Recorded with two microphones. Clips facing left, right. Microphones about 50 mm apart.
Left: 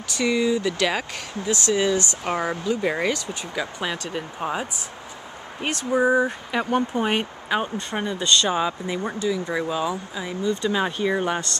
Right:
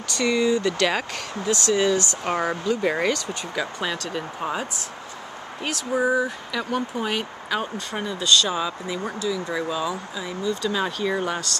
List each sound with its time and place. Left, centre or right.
0.1 s speech: centre
5.9 s speech: centre
6.5 s speech: left